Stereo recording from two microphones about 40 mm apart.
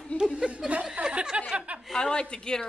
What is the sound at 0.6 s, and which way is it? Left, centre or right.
Speech, centre.